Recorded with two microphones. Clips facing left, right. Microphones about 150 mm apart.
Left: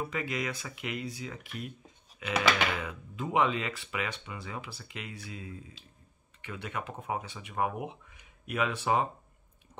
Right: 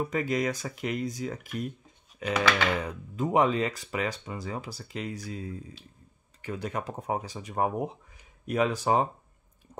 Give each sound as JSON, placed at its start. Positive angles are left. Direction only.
{"t": 0.1, "sound": "speech", "side_deg": -40}